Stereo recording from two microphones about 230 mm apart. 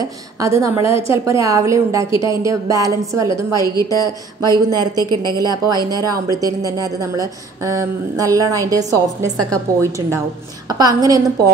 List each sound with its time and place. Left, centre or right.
0.0 s a woman's voice: centre
3.5 s a woman's voice: centre
4.4 s a woman's voice: centre